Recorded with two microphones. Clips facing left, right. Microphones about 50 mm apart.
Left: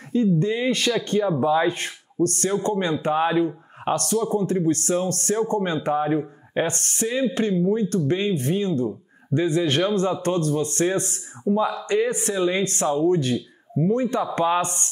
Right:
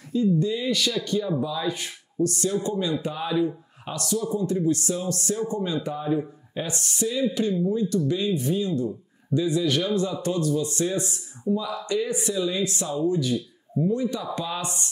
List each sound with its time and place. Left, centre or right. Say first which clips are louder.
0.1 s speech: left 2 dB; left